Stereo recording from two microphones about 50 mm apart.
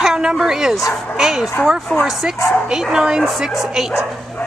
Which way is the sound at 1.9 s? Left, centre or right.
Centre.